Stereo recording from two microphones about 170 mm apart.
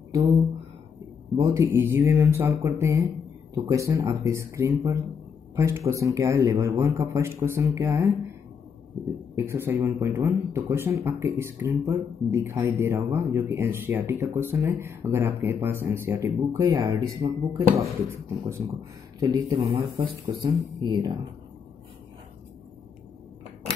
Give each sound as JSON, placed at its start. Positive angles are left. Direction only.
{"t": 1.3, "sound": "a man's voice", "side_deg": -20}
{"t": 9.3, "sound": "a man's voice", "side_deg": -15}
{"t": 19.1, "sound": "speech", "side_deg": -25}